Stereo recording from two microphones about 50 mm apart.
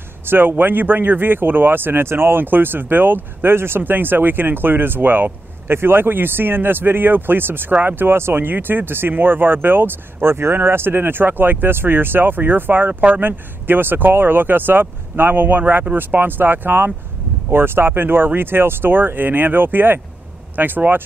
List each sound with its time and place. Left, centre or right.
0.3 s speech: right